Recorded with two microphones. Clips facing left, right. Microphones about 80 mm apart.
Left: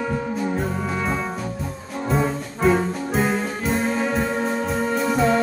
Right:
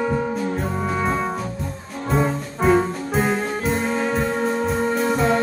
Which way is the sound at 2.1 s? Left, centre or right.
Centre.